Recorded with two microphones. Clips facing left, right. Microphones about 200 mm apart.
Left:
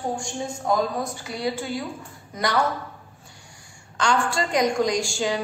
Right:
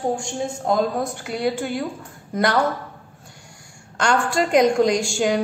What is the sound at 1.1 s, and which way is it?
Speech, 60° right (ahead or behind).